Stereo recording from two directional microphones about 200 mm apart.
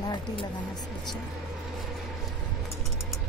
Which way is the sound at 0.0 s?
20° left (ahead or behind).